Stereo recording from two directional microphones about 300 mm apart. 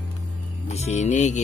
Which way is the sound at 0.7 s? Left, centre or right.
Left.